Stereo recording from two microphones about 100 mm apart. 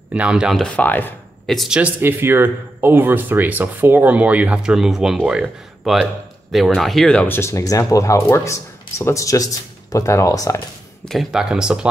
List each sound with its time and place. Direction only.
0.1 s speech: 10° right (ahead or behind)
0.6 s speech: 10° left (ahead or behind)
1.5 s speech: centre (ahead or behind)
1.8 s speech: 20° right (ahead or behind)
6.5 s speech: centre (ahead or behind)
7.2 s speech: 25° left (ahead or behind)
11.1 s speech: 5° right (ahead or behind)